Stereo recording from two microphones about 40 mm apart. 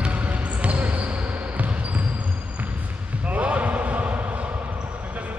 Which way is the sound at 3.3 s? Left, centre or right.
Right.